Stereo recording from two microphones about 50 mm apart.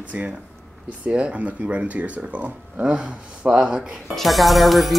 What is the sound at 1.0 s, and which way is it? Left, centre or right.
Speech, right.